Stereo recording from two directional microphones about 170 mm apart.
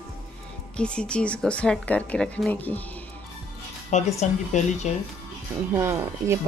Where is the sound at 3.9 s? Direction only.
45° left (ahead or behind).